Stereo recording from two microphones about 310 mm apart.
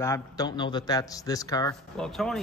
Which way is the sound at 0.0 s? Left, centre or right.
Centre.